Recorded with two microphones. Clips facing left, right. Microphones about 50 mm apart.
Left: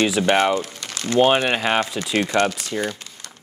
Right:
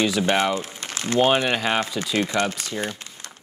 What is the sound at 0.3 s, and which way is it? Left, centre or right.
Speech, left.